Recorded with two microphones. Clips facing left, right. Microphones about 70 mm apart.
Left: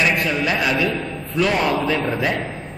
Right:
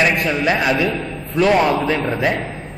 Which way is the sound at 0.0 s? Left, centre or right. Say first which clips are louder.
Right 3 dB; right.